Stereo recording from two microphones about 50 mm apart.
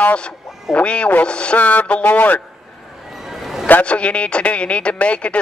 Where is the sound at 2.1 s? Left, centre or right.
Left.